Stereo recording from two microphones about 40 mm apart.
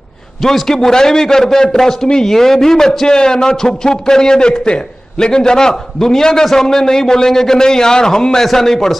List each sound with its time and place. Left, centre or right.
0.4 s a man's voice: centre